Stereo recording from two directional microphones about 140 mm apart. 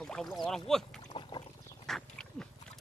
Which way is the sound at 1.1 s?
35° left (ahead or behind).